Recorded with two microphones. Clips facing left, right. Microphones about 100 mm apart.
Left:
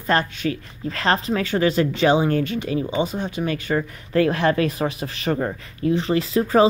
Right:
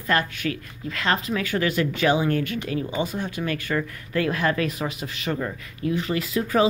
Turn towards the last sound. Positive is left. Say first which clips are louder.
# left 5 dB
turn(degrees=35)  # may be behind; listen again after turning